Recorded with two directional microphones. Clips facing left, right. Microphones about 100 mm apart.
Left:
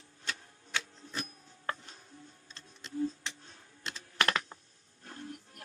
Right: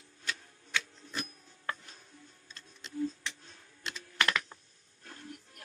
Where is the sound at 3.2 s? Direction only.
30° left (ahead or behind).